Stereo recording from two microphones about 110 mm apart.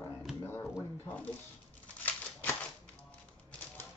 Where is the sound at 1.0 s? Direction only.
15° left (ahead or behind).